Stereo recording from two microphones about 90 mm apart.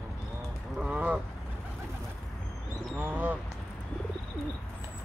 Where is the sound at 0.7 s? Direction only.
10° right (ahead or behind).